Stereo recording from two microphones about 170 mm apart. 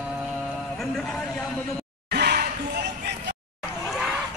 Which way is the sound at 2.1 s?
70° right (ahead or behind).